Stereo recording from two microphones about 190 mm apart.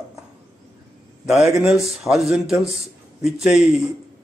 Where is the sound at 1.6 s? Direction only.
Centre (ahead or behind).